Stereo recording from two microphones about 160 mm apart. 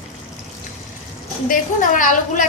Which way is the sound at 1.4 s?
55° left (ahead or behind).